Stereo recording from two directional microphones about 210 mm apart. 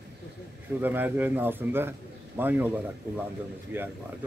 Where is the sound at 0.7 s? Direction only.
10° right (ahead or behind).